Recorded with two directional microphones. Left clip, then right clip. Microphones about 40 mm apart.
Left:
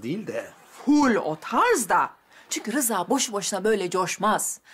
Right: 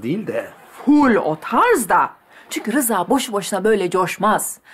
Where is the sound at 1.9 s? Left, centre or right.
Left.